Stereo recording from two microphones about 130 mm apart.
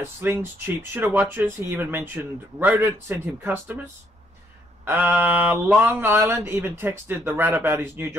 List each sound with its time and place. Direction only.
0.0 s speech: 20° right (ahead or behind)
4.8 s speech: 15° right (ahead or behind)